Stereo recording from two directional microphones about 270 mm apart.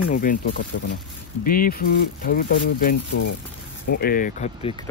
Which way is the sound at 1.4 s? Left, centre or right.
Left.